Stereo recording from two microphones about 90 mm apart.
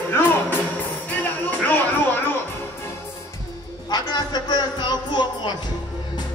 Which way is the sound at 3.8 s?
55° left (ahead or behind).